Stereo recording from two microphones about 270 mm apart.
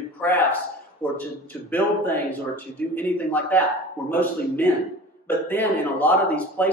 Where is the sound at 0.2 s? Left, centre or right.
Centre.